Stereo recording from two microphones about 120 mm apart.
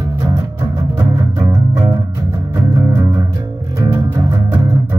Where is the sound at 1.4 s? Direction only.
30° right (ahead or behind).